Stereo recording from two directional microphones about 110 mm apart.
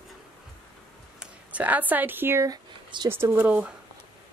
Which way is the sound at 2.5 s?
40° right (ahead or behind).